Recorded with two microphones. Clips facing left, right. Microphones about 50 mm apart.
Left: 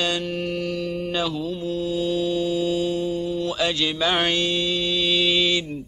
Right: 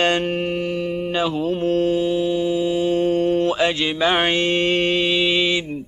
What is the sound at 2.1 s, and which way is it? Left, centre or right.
Mantra, centre.